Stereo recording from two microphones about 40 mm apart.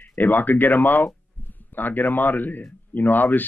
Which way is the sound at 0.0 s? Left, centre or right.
Left.